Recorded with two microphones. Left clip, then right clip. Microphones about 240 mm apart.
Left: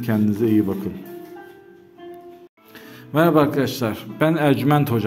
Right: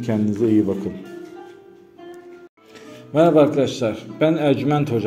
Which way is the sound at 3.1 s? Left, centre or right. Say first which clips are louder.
Right 2 dB; left.